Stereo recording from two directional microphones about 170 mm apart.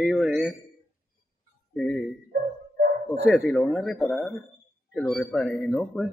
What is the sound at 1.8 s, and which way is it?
Speech, 5° left (ahead or behind).